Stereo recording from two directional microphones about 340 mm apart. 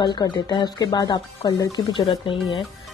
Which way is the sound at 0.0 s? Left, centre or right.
Centre.